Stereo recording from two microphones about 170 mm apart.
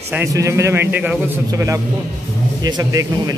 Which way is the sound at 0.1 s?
15° right (ahead or behind).